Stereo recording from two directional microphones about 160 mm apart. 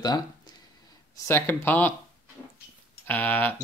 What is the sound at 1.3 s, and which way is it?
Speech, 15° left (ahead or behind).